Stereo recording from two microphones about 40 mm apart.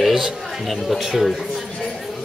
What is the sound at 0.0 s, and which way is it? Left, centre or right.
Speech, centre.